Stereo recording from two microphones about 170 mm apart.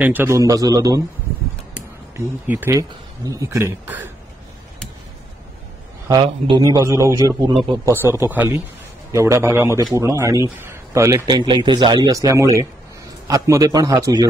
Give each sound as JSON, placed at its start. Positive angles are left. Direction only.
{"t": 0.0, "sound": "speech", "side_deg": -10}
{"t": 2.1, "sound": "speech", "side_deg": -10}
{"t": 6.0, "sound": "speech", "side_deg": -30}
{"t": 6.6, "sound": "speech", "side_deg": -20}